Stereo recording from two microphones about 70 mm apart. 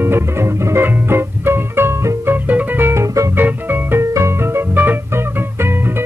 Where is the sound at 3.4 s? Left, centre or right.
Right.